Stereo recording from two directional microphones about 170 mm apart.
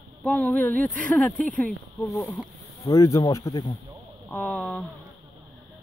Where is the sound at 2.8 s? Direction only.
20° left (ahead or behind).